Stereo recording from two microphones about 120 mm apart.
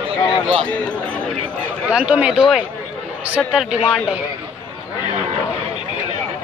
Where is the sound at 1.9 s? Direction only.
10° right (ahead or behind).